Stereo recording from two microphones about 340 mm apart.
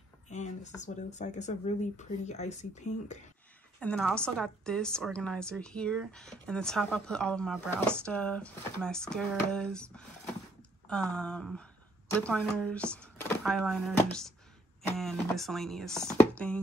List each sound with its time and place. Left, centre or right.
0.3 s speech: left
3.8 s a woman's voice: centre